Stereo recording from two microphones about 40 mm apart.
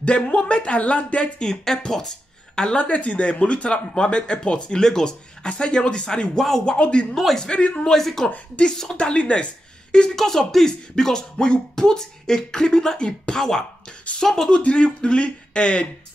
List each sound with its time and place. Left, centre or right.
0.0 s speech: left
1.4 s speech: centre
2.8 s speech: left
7.8 s speech: centre
8.9 s speech: left
10.1 s speech: centre
14.6 s speech: left